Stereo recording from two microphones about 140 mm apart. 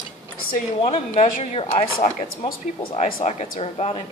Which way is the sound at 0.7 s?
45° left (ahead or behind).